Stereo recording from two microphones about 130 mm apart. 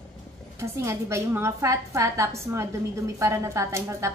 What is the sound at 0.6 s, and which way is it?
A woman's voice, 20° right (ahead or behind).